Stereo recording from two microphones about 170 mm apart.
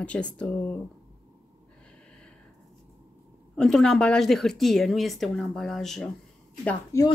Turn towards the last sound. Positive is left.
turn(degrees=20)  # may be behind; listen again after turning